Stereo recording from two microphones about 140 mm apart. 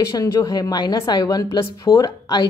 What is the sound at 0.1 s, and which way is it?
A woman's voice, 25° left (ahead or behind).